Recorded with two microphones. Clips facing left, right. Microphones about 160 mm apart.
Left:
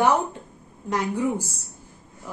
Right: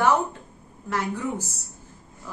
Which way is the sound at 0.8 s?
15° left (ahead or behind).